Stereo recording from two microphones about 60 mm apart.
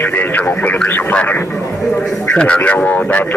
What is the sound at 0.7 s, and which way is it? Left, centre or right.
Speech, left.